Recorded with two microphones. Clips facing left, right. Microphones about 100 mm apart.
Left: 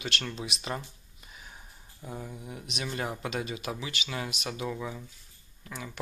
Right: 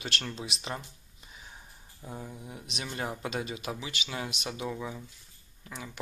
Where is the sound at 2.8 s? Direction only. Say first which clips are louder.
Left 1 dB; 20° right (ahead or behind).